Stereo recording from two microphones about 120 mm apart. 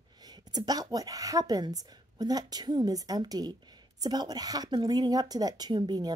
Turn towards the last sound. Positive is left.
turn(degrees=-35)  # may be behind; listen again after turning